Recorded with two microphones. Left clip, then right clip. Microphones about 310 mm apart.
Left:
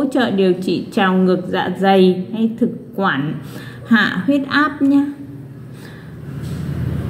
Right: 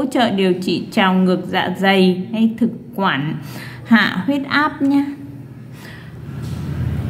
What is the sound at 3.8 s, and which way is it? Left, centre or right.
A woman's voice, centre.